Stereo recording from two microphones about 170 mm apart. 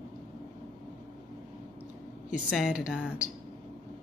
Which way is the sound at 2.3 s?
Centre (ahead or behind).